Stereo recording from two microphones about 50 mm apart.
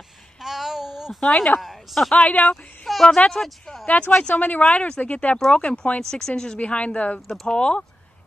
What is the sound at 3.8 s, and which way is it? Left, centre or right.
Speech, left.